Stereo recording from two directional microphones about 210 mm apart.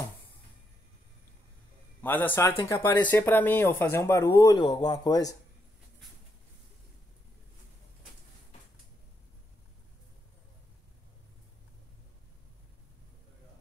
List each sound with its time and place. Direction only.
2.0 s a man's voice: 10° left (ahead or behind)